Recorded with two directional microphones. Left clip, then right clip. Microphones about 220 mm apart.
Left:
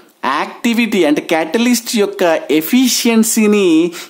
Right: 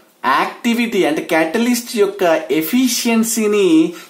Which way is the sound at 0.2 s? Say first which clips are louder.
Right 1 dB; 45° left (ahead or behind).